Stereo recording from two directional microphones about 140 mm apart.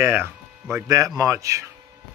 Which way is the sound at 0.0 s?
20° right (ahead or behind).